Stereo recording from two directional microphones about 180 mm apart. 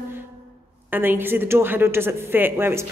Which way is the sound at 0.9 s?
10° right (ahead or behind).